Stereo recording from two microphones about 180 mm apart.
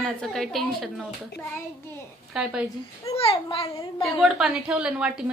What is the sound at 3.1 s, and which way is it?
Speech, 30° left (ahead or behind).